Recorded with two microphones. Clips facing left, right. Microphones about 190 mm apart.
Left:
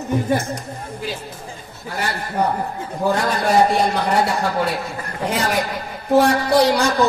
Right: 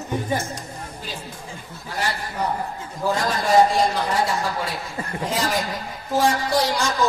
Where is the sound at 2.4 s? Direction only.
60° left (ahead or behind).